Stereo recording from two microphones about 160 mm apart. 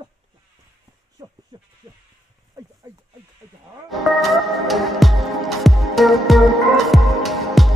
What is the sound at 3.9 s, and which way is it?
Music, centre (ahead or behind).